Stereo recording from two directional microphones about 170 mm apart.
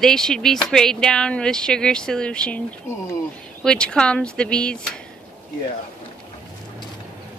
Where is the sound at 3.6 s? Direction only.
5° left (ahead or behind).